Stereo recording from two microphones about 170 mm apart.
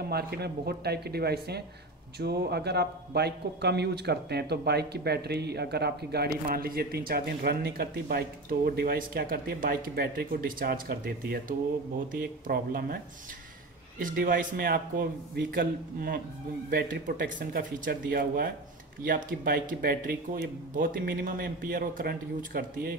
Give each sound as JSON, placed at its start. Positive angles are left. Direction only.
{"t": 0.1, "sound": "a man's voice", "side_deg": -70}